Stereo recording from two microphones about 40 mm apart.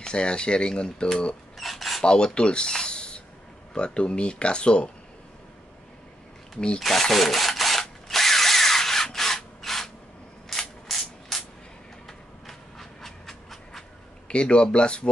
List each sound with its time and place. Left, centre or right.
0.0 s speech: left
1.6 s mechanisms: centre
2.0 s speech: left
6.8 s speech: centre
7.8 s drill: centre
10.5 s ratchet: centre
12.1 s train: centre
14.2 s speech: left